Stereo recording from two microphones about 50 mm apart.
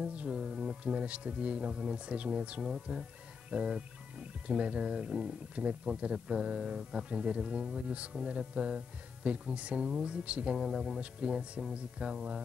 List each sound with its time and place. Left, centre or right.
0.0 s speech: centre
3.4 s music: centre
4.5 s speech: right